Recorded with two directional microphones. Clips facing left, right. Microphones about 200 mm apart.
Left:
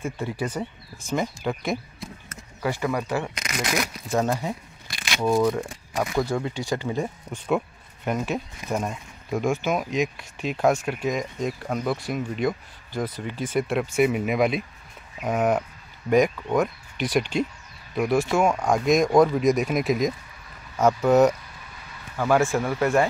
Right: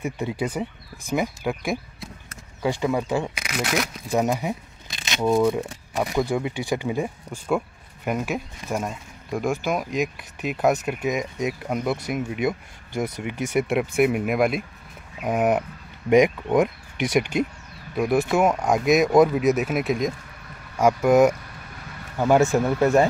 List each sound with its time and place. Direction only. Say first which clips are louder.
0.0 s speech: right 2 dB; 20° right (ahead or behind); by 2.0 s centre (ahead or behind)
2.8 s speech: right 3 dB; 20° right (ahead or behind); by 3.9 s centre (ahead or behind)
4.1 s speech: right 2 dB; 15° right (ahead or behind)
5.5 s speech: right 2 dB; 5° right (ahead or behind)
18.4 s speech: right 1 dB; 5° right (ahead or behind)
20.7 s speech: right 1 dB; 10° right (ahead or behind)